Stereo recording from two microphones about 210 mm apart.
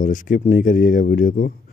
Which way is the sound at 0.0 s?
40° left (ahead or behind).